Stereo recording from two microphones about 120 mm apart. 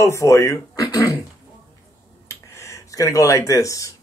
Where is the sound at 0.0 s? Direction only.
25° left (ahead or behind).